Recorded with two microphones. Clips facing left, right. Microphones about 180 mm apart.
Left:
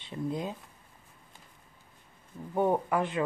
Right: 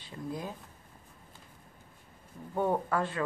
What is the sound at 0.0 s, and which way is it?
Speech, 20° left (ahead or behind).